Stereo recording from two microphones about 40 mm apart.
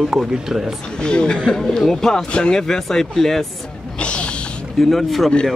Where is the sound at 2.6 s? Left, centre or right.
Centre.